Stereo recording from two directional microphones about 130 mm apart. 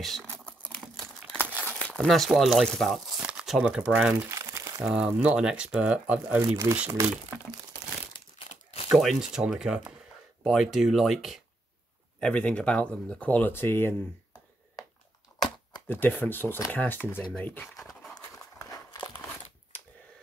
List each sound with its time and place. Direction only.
0.0 s speech: centre (ahead or behind)
0.7 s crumpling: 5° left (ahead or behind)
1.5 s crumpling: 15° right (ahead or behind)
1.8 s speech: 5° left (ahead or behind); by 4.3 s 10° right (ahead or behind)
4.3 s crumpling: 25° right (ahead or behind)
4.9 s speech: 5° right (ahead or behind)
6.4 s speech: 25° right (ahead or behind)
8.8 s speech: 5° right (ahead or behind)
12.2 s speech: 10° left (ahead or behind)
15.9 s speech: 15° left (ahead or behind)
17.2 s speech: 5° left (ahead or behind)
17.7 s dog: centre (ahead or behind)